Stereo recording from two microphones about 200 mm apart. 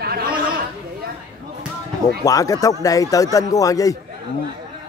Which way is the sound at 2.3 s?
15° left (ahead or behind).